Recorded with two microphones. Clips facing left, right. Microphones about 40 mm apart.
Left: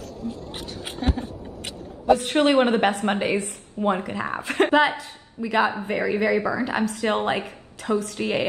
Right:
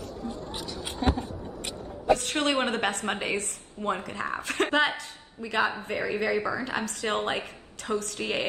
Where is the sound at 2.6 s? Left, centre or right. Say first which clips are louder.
Left 7 dB; centre.